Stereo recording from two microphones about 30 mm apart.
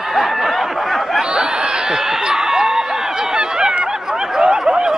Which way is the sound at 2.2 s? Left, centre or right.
Right.